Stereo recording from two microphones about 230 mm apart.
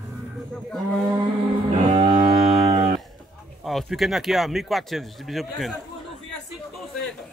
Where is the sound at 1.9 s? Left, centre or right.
Right.